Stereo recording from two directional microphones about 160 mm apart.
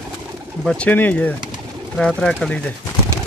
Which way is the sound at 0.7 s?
10° left (ahead or behind).